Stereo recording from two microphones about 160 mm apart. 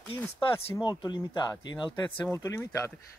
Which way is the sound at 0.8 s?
30° left (ahead or behind).